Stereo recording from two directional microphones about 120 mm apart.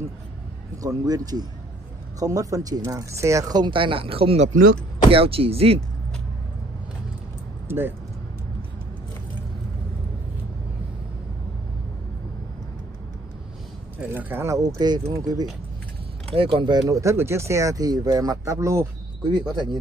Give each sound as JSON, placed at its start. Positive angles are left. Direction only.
{"t": 0.8, "sound": "speech", "side_deg": -30}
{"t": 7.6, "sound": "speech", "side_deg": -20}
{"t": 13.9, "sound": "speech", "side_deg": -15}
{"t": 16.3, "sound": "speech", "side_deg": -50}
{"t": 17.0, "sound": "speech", "side_deg": -25}